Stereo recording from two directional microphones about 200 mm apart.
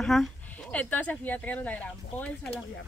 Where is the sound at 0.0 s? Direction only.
Centre (ahead or behind).